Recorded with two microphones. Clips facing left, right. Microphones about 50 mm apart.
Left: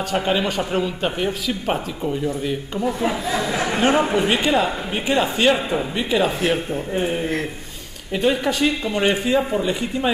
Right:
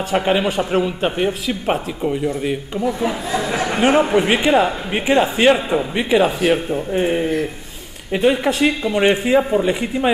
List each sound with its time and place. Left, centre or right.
0.1 s speech: centre
2.8 s speech: centre; by 10.1 s right